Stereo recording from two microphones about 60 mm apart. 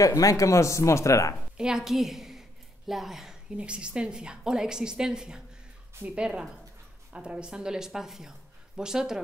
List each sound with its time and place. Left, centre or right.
0.0 s speech: left
1.6 s a woman's voice: centre
3.5 s a woman's voice: centre